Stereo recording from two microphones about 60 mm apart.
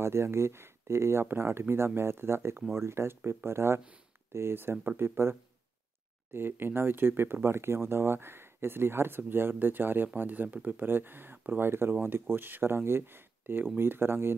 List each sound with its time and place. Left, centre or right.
0.0 s speech: right
6.3 s speech: right